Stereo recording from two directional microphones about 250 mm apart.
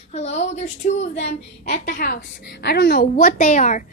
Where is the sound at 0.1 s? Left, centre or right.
Left.